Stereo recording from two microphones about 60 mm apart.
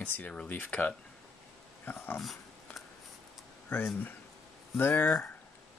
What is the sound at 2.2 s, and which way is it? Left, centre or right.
Dog, centre.